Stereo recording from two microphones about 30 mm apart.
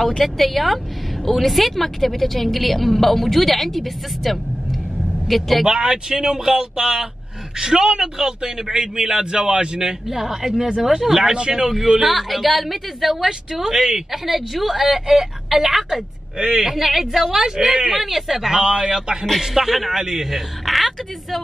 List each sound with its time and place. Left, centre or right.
0.2 s a woman's voice: centre
5.8 s speech: right
9.8 s a woman's voice: centre
12.1 s a woman's voice: centre
13.2 s speech: centre
14.1 s a woman's voice: centre
16.3 s speech: right
16.6 s a woman's voice: centre
17.3 s a woman's voice: centre
17.8 s a woman's voice: centre
18.6 s a man's voice: right
19.4 s a woman's voice: centre
19.9 s a woman's voice: centre
20.6 s a woman's voice: centre